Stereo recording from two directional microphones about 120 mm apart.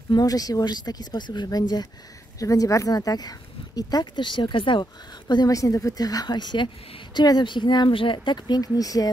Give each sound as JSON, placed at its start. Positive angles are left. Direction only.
{"t": 0.1, "sound": "speech", "side_deg": 30}
{"t": 5.3, "sound": "speech", "side_deg": 30}